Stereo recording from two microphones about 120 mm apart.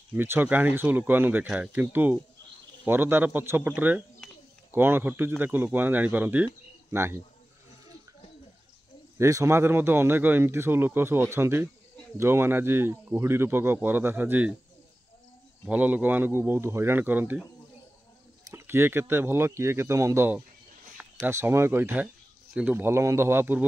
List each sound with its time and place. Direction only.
0.1 s speech: 15° right (ahead or behind)
4.2 s a sound: centre (ahead or behind)
4.6 s speech: 20° right (ahead or behind)
9.2 s speech: 25° right (ahead or behind)
15.7 s speech: 15° right (ahead or behind)
18.5 s speech: 20° right (ahead or behind)